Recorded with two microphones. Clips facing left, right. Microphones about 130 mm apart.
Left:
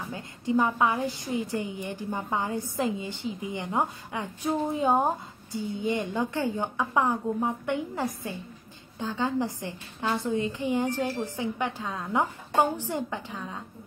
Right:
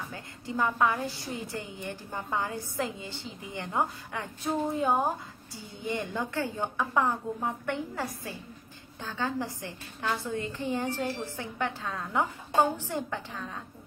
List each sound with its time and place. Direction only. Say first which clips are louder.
0.1 s a woman's voice: left 9 dB; 20° left (ahead or behind)